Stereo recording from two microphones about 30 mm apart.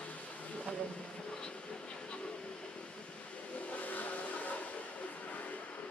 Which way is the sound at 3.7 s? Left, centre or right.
Left.